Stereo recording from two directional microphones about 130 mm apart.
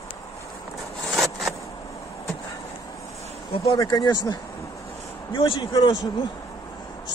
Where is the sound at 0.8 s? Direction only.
Centre (ahead or behind).